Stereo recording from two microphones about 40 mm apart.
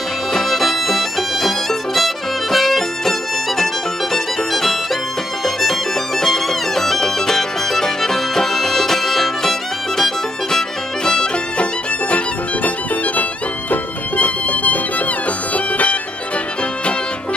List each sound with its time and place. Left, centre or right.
0.3 s music: centre
12.6 s music: left